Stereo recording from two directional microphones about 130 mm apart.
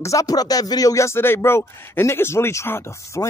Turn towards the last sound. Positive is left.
turn(degrees=25)  # may be behind; listen again after turning